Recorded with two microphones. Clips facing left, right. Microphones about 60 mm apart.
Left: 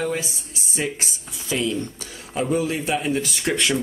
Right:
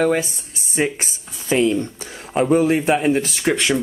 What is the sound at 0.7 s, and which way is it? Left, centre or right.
Speech, right.